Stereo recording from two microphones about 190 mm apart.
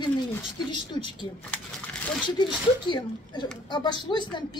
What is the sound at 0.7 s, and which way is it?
Speech, 25° left (ahead or behind).